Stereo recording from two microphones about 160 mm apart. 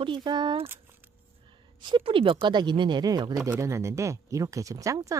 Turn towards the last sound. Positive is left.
turn(degrees=-20)  # may be behind; listen again after turning